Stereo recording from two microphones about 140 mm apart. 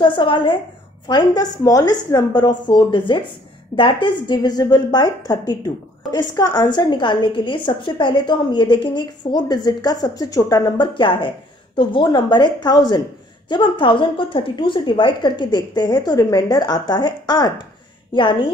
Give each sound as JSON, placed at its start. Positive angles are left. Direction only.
{"t": 0.0, "sound": "a woman's voice", "side_deg": 35}